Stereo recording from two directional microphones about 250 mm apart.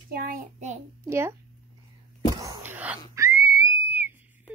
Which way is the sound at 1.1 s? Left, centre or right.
Centre.